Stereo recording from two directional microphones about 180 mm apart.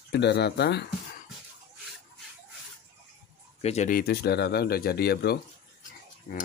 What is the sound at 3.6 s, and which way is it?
Speech, 35° left (ahead or behind).